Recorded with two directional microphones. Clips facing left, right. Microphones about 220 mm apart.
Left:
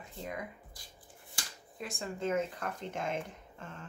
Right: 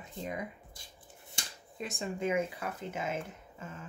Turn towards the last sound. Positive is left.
turn(degrees=-5)  # may be behind; listen again after turning